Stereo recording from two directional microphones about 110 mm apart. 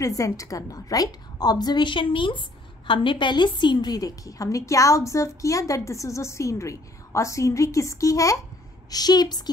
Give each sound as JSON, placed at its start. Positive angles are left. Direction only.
{"t": 0.0, "sound": "a woman's voice", "side_deg": 30}